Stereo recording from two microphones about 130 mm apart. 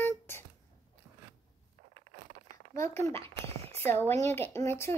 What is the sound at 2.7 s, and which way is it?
A child's voice, 20° left (ahead or behind).